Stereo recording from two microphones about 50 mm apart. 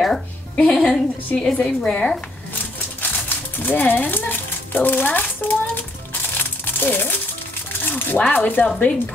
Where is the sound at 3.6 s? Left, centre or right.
Left.